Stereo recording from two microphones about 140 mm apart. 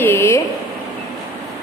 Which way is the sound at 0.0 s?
15° left (ahead or behind).